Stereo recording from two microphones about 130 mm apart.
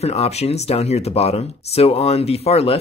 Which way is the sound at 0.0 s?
55° left (ahead or behind).